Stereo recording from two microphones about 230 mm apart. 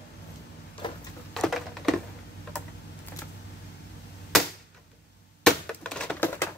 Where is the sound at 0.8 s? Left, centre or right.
Centre.